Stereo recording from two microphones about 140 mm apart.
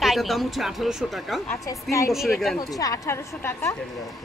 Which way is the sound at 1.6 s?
20° left (ahead or behind).